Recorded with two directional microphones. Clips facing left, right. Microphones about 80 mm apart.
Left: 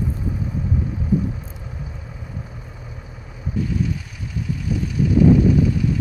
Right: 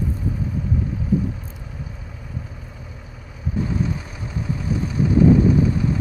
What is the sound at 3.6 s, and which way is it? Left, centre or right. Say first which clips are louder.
Vehicle: even; right.